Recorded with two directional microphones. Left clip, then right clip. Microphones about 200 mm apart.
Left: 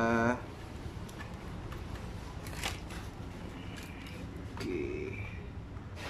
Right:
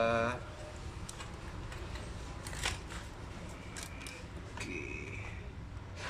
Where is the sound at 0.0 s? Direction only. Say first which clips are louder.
Left 1 dB; 40° left (ahead or behind).